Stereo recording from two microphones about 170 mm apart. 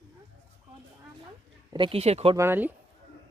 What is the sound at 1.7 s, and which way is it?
Speech, 30° right (ahead or behind).